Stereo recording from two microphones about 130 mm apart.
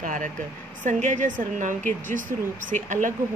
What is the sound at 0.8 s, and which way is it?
Speech, 75° right (ahead or behind).